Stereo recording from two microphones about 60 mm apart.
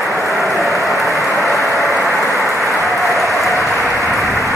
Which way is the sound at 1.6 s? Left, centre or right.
Left.